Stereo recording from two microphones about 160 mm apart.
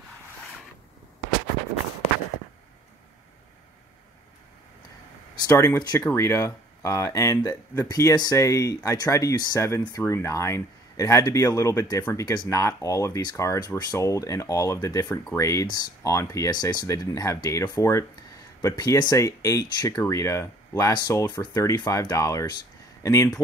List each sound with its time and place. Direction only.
5.3 s speech: 25° left (ahead or behind)